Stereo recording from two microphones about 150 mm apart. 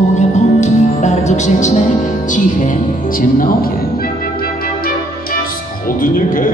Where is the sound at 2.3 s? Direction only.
55° left (ahead or behind); by 4.5 s 80° left.